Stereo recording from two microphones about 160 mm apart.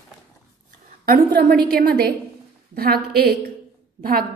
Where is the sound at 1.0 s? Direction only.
65° right (ahead or behind).